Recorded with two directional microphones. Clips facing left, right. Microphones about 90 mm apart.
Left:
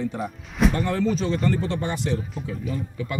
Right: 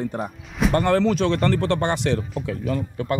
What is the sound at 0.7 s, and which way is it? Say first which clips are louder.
Speech: right 5 dB; 65° right (ahead or behind).